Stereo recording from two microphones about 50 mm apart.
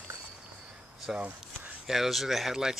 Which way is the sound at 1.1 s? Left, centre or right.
Centre.